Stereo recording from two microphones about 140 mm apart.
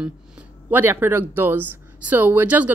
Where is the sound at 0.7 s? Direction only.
15° right (ahead or behind).